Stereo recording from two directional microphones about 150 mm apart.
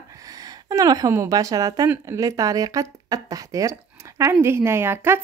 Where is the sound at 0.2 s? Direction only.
25° right (ahead or behind).